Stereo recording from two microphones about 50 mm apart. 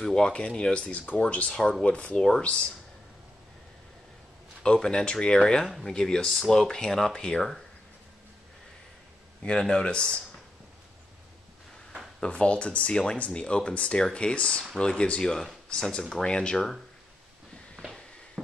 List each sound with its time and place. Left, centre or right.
0.0 s speech: centre
4.6 s speech: centre
9.4 s speech: centre
12.2 s speech: left